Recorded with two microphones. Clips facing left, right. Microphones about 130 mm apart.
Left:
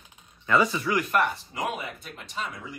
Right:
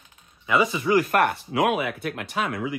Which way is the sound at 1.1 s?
60° right (ahead or behind).